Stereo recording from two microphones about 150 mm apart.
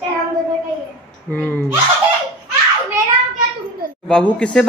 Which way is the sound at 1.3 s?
10° left (ahead or behind).